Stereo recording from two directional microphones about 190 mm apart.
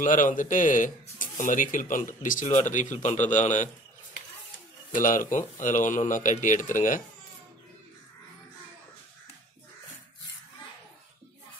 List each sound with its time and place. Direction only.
0.0 s speech: 45° left (ahead or behind)
4.9 s speech: 45° left (ahead or behind)